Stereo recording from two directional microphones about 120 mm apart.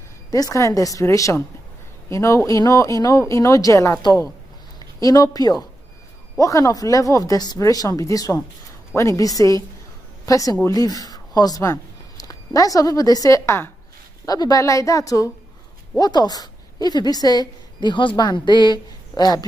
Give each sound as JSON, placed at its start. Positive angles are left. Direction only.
{"t": 0.3, "sound": "a woman's voice", "side_deg": 30}